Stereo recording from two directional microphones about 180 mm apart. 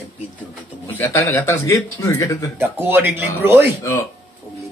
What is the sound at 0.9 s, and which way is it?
A man's voice, 10° left (ahead or behind).